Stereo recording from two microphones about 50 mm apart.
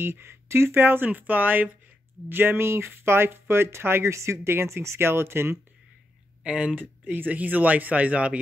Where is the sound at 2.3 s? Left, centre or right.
Right.